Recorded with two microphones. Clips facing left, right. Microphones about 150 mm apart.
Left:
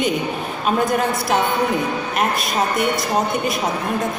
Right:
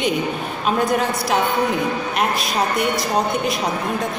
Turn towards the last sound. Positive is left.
turn(degrees=0)  # may be behind; listen again after turning